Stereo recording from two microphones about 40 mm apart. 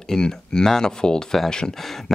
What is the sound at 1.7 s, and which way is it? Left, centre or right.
Speech, centre.